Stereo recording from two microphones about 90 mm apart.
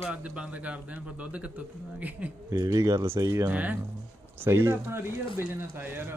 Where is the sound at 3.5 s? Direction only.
20° right (ahead or behind).